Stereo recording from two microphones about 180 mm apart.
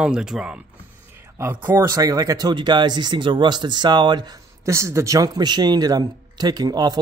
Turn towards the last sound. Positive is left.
turn(degrees=-20)  # may be behind; listen again after turning